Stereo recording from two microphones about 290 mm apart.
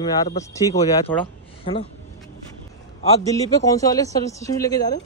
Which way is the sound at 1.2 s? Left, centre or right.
Centre.